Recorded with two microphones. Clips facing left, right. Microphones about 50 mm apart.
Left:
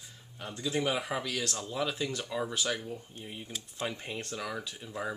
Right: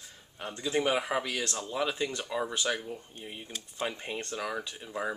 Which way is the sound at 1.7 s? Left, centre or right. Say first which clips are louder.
Right 3 dB; centre.